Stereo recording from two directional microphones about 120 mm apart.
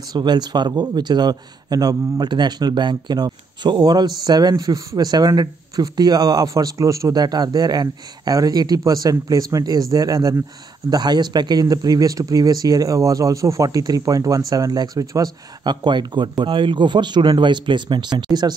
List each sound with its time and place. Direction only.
0.1 s a man's voice: 35° right (ahead or behind)